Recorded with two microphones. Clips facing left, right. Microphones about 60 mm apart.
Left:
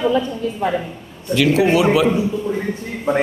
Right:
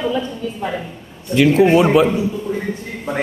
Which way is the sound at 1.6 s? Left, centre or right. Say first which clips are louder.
Right 4 dB; right.